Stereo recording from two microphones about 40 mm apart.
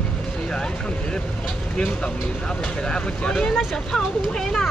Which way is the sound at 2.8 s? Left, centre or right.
Left.